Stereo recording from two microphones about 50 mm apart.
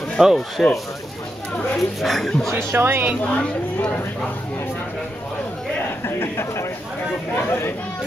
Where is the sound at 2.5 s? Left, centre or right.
Right.